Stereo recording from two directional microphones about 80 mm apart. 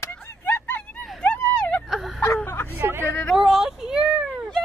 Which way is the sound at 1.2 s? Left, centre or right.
Centre.